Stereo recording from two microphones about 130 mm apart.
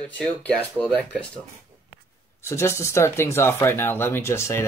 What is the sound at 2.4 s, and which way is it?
Speech, 20° left (ahead or behind).